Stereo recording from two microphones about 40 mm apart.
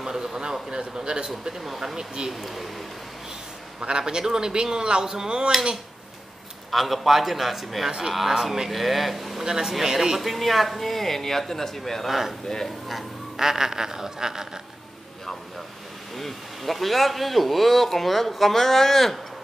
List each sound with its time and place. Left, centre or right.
0.0 s a man's voice: centre
1.6 s speech: centre
2.0 s speech: centre
2.3 s speech: centre
3.8 s speech: right
6.7 s speech: centre
8.4 s speech: centre
8.6 s speech: centre
9.4 s speech: centre
13.4 s speech: centre
16.2 s speech: centre